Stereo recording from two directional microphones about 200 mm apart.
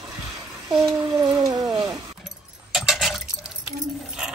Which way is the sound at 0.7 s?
5° right (ahead or behind).